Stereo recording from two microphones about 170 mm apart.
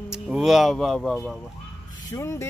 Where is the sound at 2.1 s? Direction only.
15° left (ahead or behind).